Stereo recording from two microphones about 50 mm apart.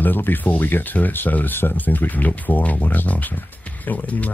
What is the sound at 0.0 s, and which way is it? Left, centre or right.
Speech, left.